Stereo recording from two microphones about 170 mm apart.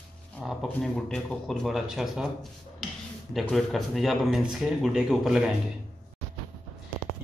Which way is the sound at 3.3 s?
Centre (ahead or behind).